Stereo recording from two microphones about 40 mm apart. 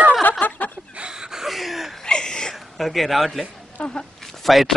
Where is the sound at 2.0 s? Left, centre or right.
Left.